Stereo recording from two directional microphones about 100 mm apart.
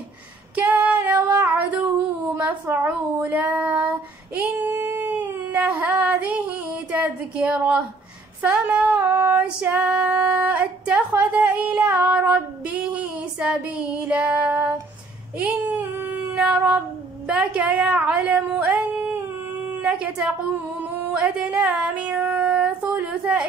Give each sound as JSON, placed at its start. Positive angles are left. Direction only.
{"t": 0.6, "sound": "female singing", "side_deg": -15}
{"t": 1.3, "sound": "a sound", "side_deg": -20}
{"t": 2.3, "sound": "female singing", "side_deg": -20}
{"t": 4.4, "sound": "a sound", "side_deg": -20}
{"t": 8.4, "sound": "female singing", "side_deg": -15}
{"t": 15.3, "sound": "speech", "side_deg": -15}
{"t": 16.3, "sound": "female singing", "side_deg": -10}
{"t": 17.3, "sound": "speech", "side_deg": -10}
{"t": 20.8, "sound": "a sound", "side_deg": -15}
{"t": 21.6, "sound": "female singing", "side_deg": -15}